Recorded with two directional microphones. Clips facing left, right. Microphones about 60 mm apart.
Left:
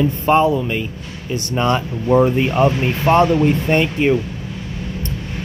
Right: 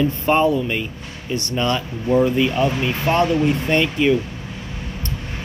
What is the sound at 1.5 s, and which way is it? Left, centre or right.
Speech, left.